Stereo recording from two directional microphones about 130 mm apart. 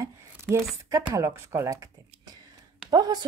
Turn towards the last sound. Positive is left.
turn(degrees=-35)  # may be behind; listen again after turning